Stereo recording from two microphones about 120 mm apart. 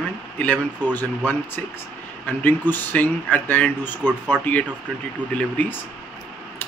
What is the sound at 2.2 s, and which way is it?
Speech, 15° left (ahead or behind).